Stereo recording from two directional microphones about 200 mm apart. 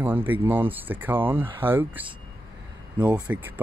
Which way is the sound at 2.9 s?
20° right (ahead or behind).